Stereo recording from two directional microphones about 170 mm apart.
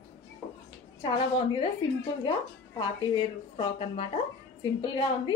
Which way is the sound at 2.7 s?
30° left (ahead or behind).